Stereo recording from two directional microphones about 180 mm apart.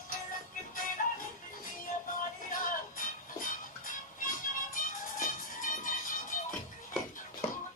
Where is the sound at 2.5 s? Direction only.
50° left (ahead or behind).